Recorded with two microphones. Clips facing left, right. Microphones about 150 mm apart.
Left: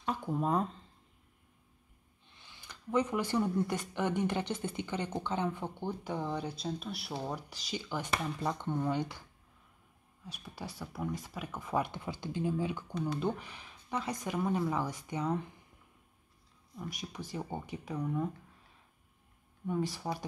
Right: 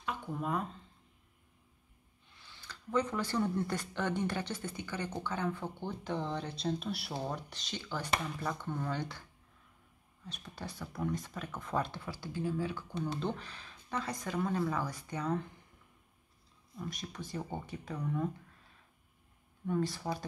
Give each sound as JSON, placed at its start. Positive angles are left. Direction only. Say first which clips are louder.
{"t": 0.0, "sound": "speech", "louder": "left 4 dB", "side_deg": 35}
{"t": 2.3, "sound": "speech", "louder": "right 1 dB", "side_deg": 15}
{"t": 10.2, "sound": "speech", "louder": "left 1 dB", "side_deg": 10}
{"t": 16.7, "sound": "speech", "louder": "even", "side_deg": 10}
{"t": 19.6, "sound": "speech", "louder": "even", "side_deg": 10}